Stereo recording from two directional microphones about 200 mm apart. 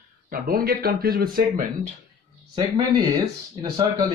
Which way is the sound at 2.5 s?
25° right (ahead or behind).